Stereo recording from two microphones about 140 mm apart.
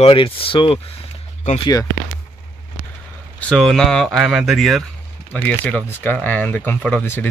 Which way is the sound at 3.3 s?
5° left (ahead or behind).